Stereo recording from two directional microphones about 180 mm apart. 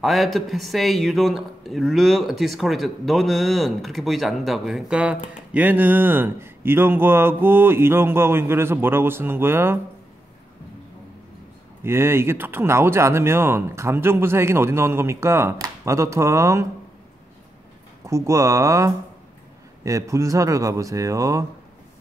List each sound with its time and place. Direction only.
0.0 s a man's voice: centre (ahead or behind)
11.8 s speech: 15° right (ahead or behind)
18.0 s speech: 15° right (ahead or behind)